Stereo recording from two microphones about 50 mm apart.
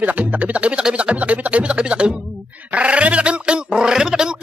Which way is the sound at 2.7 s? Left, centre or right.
Right.